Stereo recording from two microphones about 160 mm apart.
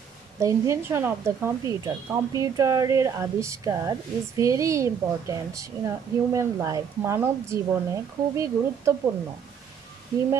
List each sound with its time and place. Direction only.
0.4 s speech: 20° right (ahead or behind)